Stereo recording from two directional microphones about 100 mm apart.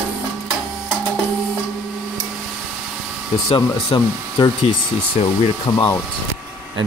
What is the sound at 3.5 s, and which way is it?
Speech, 45° left (ahead or behind).